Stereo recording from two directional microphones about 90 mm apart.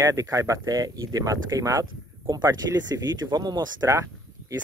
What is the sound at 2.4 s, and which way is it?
Speech, 50° right (ahead or behind).